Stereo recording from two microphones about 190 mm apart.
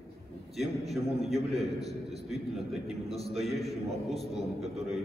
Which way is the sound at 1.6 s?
35° right (ahead or behind).